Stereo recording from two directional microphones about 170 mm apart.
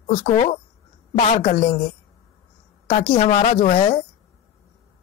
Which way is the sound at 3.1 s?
35° left (ahead or behind).